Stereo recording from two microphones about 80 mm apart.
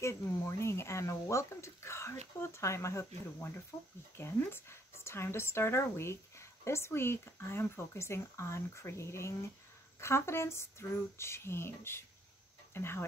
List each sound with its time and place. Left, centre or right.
0.0 s speech: left
3.7 s speech: centre
4.2 s speech: left